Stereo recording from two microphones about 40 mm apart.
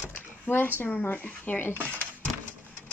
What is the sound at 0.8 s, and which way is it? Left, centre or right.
Speech, left.